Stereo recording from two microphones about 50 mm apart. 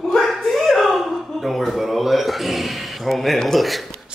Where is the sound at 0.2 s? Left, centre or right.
Centre.